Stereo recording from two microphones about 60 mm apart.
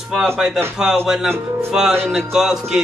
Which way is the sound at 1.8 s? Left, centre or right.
Centre.